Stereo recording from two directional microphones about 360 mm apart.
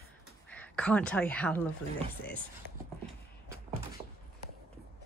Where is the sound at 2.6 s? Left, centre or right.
Right.